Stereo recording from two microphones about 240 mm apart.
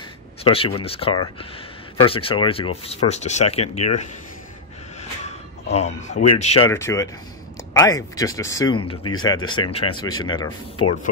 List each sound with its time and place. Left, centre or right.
0.4 s speech: left
5.2 s speech: left
6.7 s speech: centre